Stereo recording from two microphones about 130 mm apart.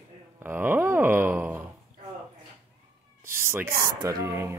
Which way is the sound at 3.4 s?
20° right (ahead or behind).